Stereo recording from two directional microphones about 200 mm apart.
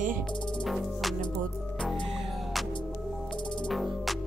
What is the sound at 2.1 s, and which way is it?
Music, centre (ahead or behind).